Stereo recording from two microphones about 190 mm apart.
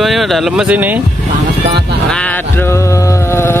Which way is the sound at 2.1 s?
5° left (ahead or behind).